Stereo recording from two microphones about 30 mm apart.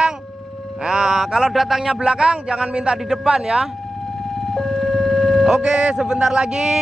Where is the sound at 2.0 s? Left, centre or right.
Right.